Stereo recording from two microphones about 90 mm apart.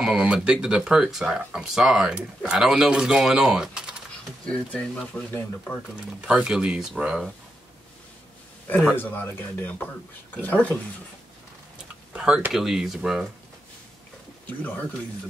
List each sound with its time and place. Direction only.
0.0 s speech: 10° right (ahead or behind)
4.5 s speech: 10° left (ahead or behind)
6.2 s speech: 10° right (ahead or behind)
8.9 s speech: 20° left (ahead or behind)
12.1 s speech: 10° right (ahead or behind)
14.4 s speech: 15° left (ahead or behind)